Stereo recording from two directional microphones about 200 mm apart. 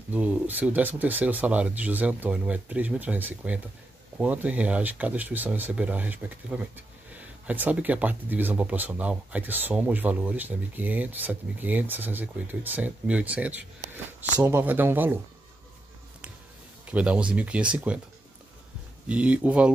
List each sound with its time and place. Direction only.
0.1 s speech: 5° right (ahead or behind)
16.9 s speech: 5° right (ahead or behind)
19.0 s speech: 5° right (ahead or behind)